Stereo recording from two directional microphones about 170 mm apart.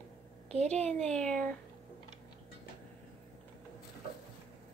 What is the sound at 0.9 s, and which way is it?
Speech, 5° left (ahead or behind).